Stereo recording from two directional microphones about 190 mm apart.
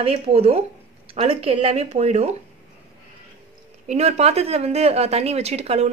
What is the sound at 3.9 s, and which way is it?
Speech, 35° right (ahead or behind).